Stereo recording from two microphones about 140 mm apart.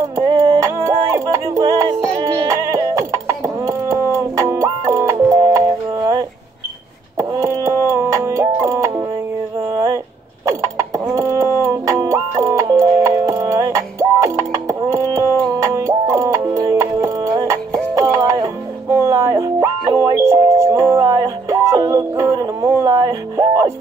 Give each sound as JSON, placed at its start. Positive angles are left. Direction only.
{"t": 0.0, "sound": "music", "side_deg": -20}
{"t": 2.1, "sound": "music", "side_deg": -35}
{"t": 2.5, "sound": "a sound", "side_deg": -20}
{"t": 7.2, "sound": "music", "side_deg": -20}
{"t": 9.7, "sound": "a sound", "side_deg": -20}
{"t": 10.5, "sound": "mechanisms", "side_deg": -20}
{"t": 11.1, "sound": "music", "side_deg": -20}